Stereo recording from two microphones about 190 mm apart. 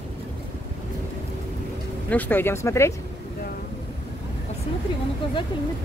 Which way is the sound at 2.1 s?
10° left (ahead or behind).